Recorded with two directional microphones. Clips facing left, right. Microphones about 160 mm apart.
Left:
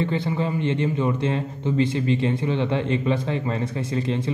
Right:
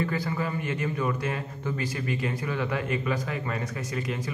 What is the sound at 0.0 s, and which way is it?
A man's voice, 25° left (ahead or behind).